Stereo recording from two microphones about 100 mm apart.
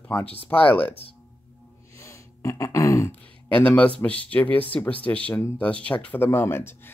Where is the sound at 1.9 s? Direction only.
30° left (ahead or behind).